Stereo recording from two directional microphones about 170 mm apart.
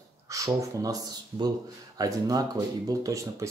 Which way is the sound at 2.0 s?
20° right (ahead or behind).